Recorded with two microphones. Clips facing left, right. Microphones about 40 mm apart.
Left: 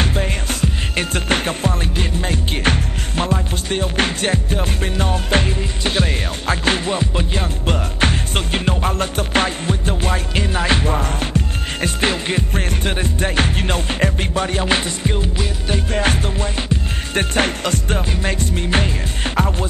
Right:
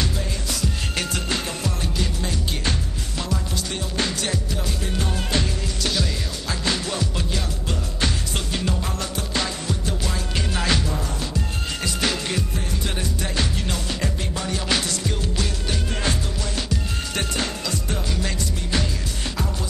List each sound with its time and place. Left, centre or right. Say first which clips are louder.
0.0 s music: left 6 dB; left
6.9 s music: left 6 dB; left
7.6 s music: left 9 dB; left
10.5 s music: left 5 dB; left
10.8 s music: left 7 dB; left
15.9 s music: left 9 dB; left
16.5 s music: left 4 dB; left